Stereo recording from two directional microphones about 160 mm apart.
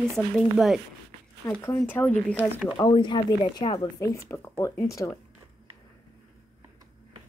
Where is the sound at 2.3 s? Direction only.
10° right (ahead or behind).